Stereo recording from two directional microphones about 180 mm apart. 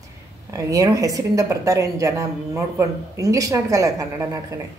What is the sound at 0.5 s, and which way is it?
Speech, 20° right (ahead or behind).